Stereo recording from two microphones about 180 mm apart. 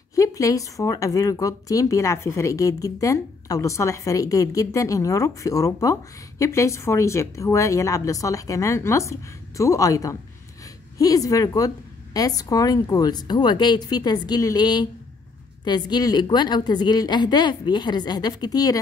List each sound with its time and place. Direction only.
0.1 s a woman's voice: 20° left (ahead or behind)